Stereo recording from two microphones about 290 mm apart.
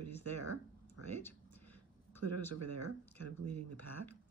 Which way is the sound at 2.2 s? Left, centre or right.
Right.